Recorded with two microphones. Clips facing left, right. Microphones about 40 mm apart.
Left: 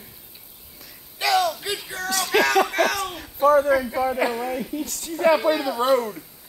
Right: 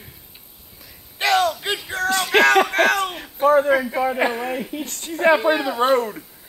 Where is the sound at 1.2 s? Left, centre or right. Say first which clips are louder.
Right 2 dB; right.